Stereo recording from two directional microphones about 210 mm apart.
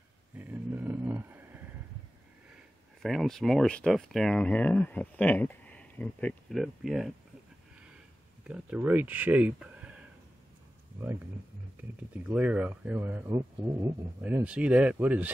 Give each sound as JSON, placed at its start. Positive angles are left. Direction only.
{"t": 0.4, "sound": "a sound", "side_deg": -10}
{"t": 3.0, "sound": "speech", "side_deg": 0}
{"t": 8.5, "sound": "speech", "side_deg": -5}
{"t": 11.8, "sound": "speech", "side_deg": -5}